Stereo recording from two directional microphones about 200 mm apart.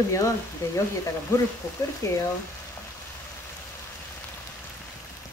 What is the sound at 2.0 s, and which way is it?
Speech, 15° left (ahead or behind).